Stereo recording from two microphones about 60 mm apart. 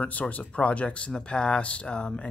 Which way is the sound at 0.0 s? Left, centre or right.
Left.